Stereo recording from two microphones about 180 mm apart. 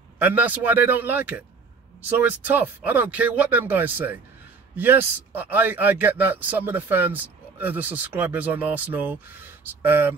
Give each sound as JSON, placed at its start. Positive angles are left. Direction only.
{"t": 0.2, "sound": "a man's voice", "side_deg": -10}